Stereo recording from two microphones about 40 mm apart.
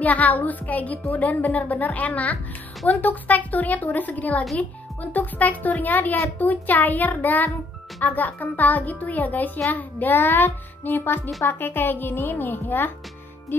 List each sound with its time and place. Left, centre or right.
0.0 s a child's voice: left
10.1 s a child's voice: left